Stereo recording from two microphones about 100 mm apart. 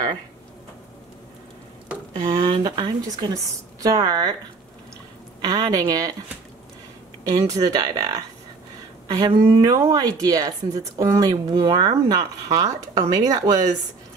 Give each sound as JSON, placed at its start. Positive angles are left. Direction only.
{"t": 2.1, "sound": "a sound", "side_deg": -45}
{"t": 2.6, "sound": "a woman's voice", "side_deg": -45}
{"t": 5.4, "sound": "a woman's voice", "side_deg": -40}
{"t": 7.2, "sound": "a woman's voice", "side_deg": -35}